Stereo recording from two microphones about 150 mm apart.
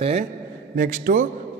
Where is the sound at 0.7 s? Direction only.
60° right (ahead or behind).